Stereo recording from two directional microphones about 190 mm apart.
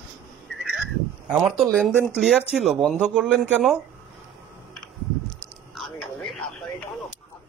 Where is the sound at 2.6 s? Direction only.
Centre (ahead or behind).